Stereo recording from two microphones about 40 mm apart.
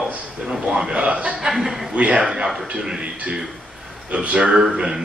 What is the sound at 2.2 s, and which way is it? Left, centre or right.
Speech, centre.